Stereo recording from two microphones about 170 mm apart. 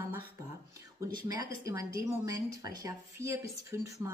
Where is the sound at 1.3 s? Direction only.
20° right (ahead or behind).